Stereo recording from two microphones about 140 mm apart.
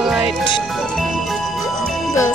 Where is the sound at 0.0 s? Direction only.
5° right (ahead or behind).